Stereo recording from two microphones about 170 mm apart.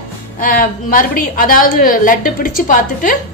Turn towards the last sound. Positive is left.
turn(degrees=50)  # may be behind; listen again after turning